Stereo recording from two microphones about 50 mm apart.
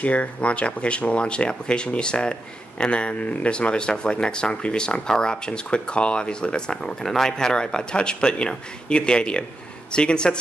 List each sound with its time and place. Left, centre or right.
0.0 s speech: left